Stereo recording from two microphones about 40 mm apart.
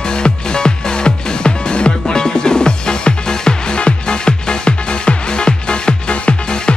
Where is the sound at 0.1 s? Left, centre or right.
Left.